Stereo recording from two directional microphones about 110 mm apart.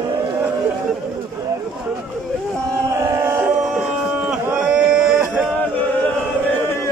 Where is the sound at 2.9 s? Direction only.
30° right (ahead or behind).